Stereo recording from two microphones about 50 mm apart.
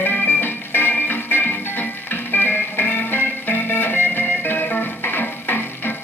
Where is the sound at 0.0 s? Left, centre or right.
Left.